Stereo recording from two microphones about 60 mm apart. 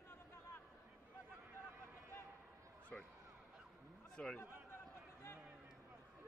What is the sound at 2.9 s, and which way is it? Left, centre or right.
Speech, left.